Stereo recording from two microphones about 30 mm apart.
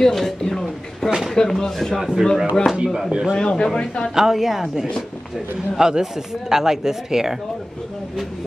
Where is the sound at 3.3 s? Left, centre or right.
Left.